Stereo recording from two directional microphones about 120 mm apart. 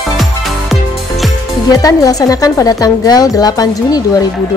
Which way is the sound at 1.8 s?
30° left (ahead or behind).